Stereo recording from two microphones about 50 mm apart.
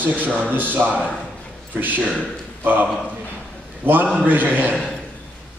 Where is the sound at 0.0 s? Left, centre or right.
Right.